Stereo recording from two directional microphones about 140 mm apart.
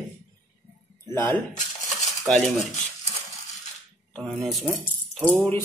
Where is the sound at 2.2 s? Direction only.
Centre (ahead or behind).